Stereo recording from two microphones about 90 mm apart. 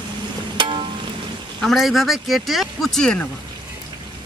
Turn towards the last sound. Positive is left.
turn(degrees=5)  # may be behind; listen again after turning